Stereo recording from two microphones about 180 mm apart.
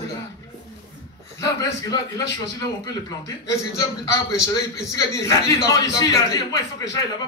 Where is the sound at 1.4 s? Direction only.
20° left (ahead or behind).